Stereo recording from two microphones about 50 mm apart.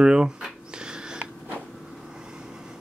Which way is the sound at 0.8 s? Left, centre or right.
Centre.